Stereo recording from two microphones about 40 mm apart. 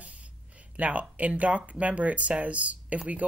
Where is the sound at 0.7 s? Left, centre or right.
Right.